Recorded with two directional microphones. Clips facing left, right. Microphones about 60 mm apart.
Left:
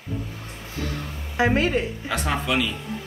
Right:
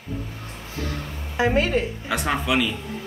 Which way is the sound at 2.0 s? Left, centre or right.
Centre.